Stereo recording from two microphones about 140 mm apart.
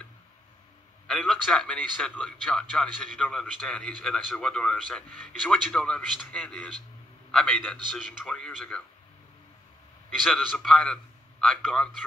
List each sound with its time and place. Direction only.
1.0 s a man's voice: 5° left (ahead or behind)
10.2 s a man's voice: centre (ahead or behind)